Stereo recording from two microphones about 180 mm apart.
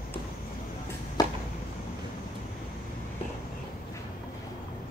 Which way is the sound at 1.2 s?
20° left (ahead or behind).